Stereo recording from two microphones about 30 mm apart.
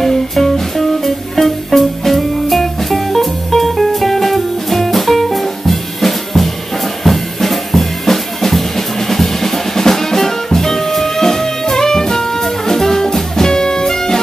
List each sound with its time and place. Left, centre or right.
0.0 s music: centre
7.1 s drum kit: centre